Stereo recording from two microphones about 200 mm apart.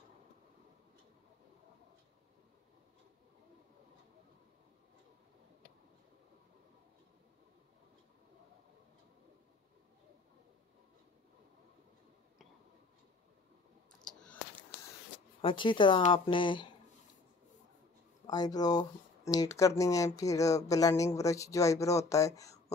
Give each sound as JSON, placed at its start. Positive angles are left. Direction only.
{"t": 14.1, "sound": "a sound", "side_deg": 5}
{"t": 15.4, "sound": "speech", "side_deg": 25}
{"t": 18.2, "sound": "speech", "side_deg": 20}